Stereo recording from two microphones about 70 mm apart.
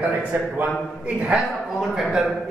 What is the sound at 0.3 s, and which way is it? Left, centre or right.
Speech, centre.